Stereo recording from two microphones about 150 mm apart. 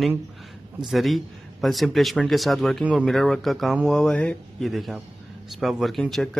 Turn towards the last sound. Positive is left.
turn(degrees=0)  # may be behind; listen again after turning